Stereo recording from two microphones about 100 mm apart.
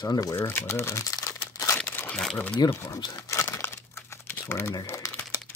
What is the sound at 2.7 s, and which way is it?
Speech, 30° left (ahead or behind).